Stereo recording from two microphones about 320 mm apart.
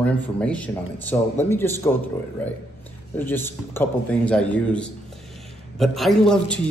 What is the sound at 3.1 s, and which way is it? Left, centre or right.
A man's voice, centre.